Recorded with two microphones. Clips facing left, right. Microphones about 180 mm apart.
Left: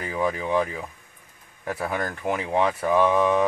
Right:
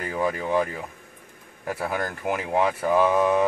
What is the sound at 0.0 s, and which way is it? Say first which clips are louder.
Speech: even; 5° right (ahead or behind).